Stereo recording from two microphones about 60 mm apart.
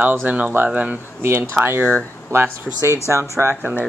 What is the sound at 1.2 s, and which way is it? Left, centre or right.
Speech, right.